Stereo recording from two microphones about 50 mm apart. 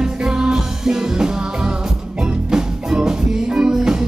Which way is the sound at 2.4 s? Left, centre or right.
Centre.